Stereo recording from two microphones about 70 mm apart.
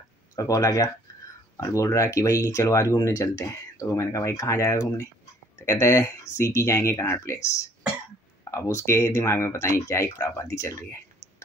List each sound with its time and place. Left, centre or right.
0.4 s speech: left
8.5 s speech: left
10.1 s speech: left